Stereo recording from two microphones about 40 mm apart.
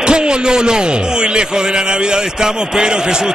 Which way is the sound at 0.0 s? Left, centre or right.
Right.